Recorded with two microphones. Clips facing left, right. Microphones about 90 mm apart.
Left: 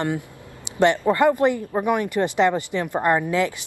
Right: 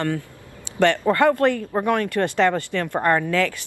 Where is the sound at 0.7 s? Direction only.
20° left (ahead or behind).